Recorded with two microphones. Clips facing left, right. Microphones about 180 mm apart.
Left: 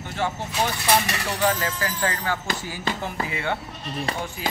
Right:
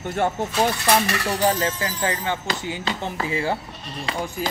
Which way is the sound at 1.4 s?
30° right (ahead or behind).